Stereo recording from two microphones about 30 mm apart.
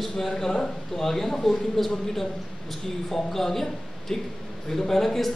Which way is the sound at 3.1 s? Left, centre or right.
Centre.